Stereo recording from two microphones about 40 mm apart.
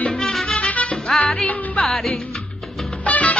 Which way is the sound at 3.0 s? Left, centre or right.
Left.